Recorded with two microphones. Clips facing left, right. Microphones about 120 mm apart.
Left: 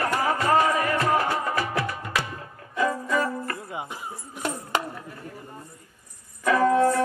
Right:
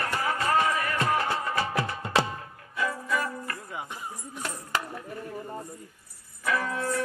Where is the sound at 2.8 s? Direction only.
40° left (ahead or behind).